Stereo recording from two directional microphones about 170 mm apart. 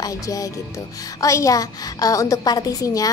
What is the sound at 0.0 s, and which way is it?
A woman's voice, 20° left (ahead or behind).